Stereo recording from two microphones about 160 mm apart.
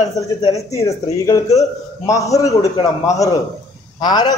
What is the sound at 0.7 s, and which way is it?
A man's voice, 20° left (ahead or behind).